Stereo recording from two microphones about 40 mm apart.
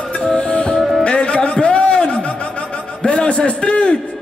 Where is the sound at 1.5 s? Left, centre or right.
Left.